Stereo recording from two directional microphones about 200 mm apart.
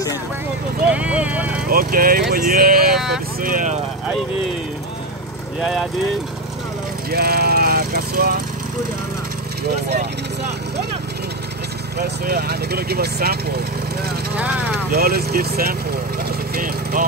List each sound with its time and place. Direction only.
0.8 s speech: 5° right (ahead or behind)
1.7 s speech: 45° right (ahead or behind)
2.9 s vehicle: centre (ahead or behind)
3.3 s speech: 45° right (ahead or behind)
5.6 s speech: 5° right (ahead or behind)
7.1 s speech: 50° right (ahead or behind)
12.0 s speech: 50° right (ahead or behind)
14.3 s speech: 5° right (ahead or behind)
14.9 s speech: 50° right (ahead or behind)
16.3 s wood: 45° right (ahead or behind)